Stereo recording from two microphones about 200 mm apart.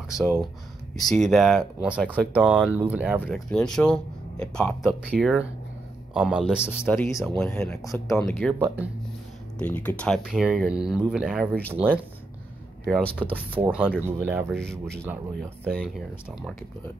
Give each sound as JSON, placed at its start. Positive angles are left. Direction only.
{"t": 0.1, "sound": "speech", "side_deg": 15}
{"t": 0.9, "sound": "speech", "side_deg": 0}
{"t": 6.8, "sound": "speech", "side_deg": 10}
{"t": 7.8, "sound": "speech", "side_deg": 15}
{"t": 8.2, "sound": "speech", "side_deg": 5}
{"t": 12.8, "sound": "speech", "side_deg": 5}
{"t": 13.7, "sound": "speech", "side_deg": -5}
{"t": 14.5, "sound": "speech", "side_deg": 5}